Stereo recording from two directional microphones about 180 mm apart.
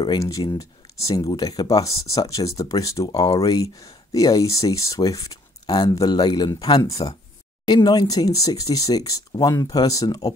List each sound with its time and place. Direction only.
0.0 s speech: 20° left (ahead or behind)